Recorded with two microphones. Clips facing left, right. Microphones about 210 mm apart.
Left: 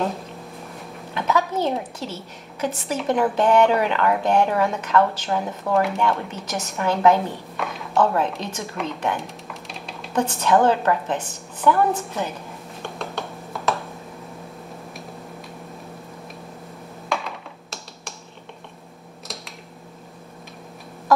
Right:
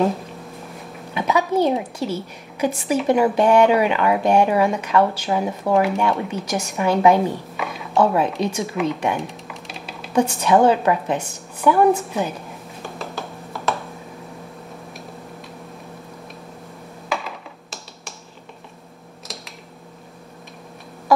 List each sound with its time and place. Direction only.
1.1 s a woman's voice: 10° right (ahead or behind)
5.7 s speech: centre (ahead or behind)
5.9 s speech: 10° right (ahead or behind)
8.4 s computer keyboard: 10° right (ahead or behind)
10.1 s speech: 10° right (ahead or behind)
12.8 s computer keyboard: centre (ahead or behind)
17.1 s computer keyboard: centre (ahead or behind)